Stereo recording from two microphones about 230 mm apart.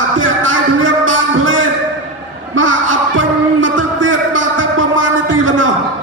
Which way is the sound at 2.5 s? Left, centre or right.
Right.